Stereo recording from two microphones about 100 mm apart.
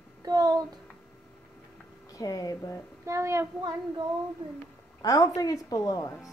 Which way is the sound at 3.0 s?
30° right (ahead or behind).